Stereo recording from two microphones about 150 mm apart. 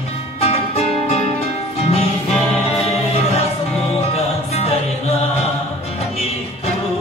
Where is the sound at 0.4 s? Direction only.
45° left (ahead or behind).